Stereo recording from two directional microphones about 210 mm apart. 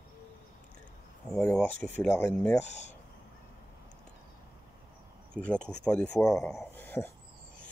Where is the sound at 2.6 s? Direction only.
30° left (ahead or behind).